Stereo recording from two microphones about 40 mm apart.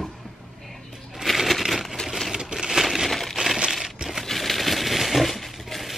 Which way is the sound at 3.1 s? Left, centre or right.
Centre.